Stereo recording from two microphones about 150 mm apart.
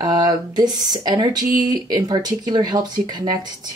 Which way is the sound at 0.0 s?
25° right (ahead or behind).